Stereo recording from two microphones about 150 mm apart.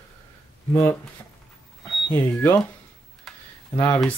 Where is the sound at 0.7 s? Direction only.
15° left (ahead or behind).